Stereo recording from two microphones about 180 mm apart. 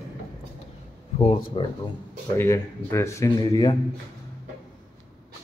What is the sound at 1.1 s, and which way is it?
Speech, 35° left (ahead or behind).